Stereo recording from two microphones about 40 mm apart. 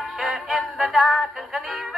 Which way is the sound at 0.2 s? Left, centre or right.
Centre.